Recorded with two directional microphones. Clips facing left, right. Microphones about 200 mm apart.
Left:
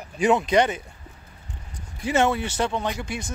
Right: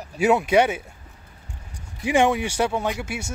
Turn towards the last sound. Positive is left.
turn(degrees=-10)  # may be behind; listen again after turning